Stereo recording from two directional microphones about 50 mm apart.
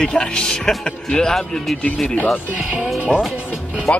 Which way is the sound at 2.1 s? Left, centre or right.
Left.